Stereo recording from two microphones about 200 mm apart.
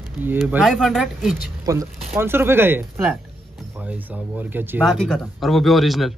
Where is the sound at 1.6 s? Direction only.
15° right (ahead or behind); by 6.1 s centre (ahead or behind).